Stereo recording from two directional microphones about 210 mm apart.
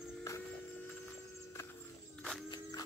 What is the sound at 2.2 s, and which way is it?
Walk, centre (ahead or behind).